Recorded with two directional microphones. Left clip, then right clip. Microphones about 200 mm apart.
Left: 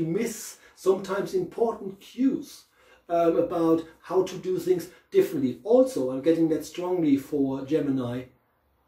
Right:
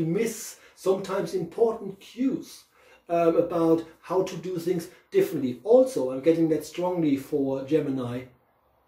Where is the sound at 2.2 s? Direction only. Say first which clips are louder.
Left 2 dB; 5° left (ahead or behind).